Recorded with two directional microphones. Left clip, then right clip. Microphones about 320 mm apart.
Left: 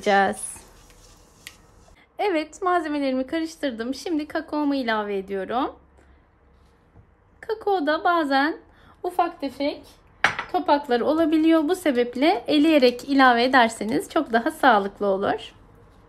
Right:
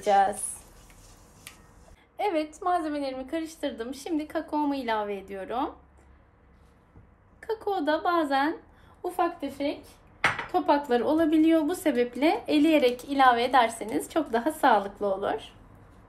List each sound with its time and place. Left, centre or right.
0.0 s a woman's voice: left
2.1 s a woman's voice: left
7.3 s a woman's voice: left